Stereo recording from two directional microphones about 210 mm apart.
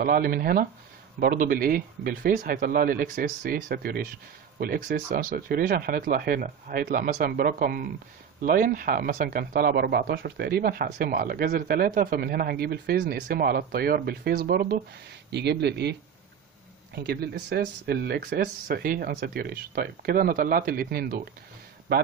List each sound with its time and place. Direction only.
0.0 s speech: 45° right (ahead or behind)